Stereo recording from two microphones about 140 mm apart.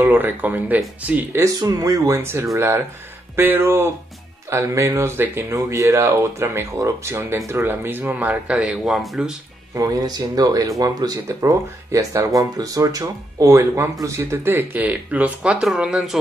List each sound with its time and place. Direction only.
0.0 s speech: 15° right (ahead or behind)
1.4 s speech: 25° right (ahead or behind); by 9.3 s centre (ahead or behind)
9.8 s speech: 30° right (ahead or behind); by 16.2 s 5° right (ahead or behind)